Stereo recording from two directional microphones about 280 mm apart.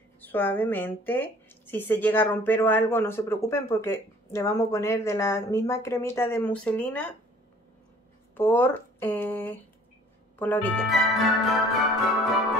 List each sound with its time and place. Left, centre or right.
0.2 s a woman's voice: centre
8.4 s a woman's voice: centre